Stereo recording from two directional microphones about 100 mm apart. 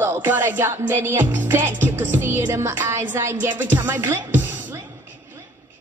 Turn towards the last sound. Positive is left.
turn(degrees=-25)  # may be behind; listen again after turning